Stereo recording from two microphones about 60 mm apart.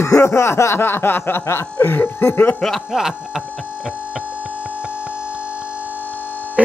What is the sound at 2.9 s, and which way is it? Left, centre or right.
Speech, centre.